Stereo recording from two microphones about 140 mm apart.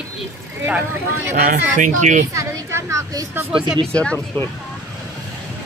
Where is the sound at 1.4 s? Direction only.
60° right (ahead or behind).